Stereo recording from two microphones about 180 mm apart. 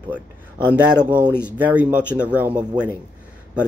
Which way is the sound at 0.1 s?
10° left (ahead or behind).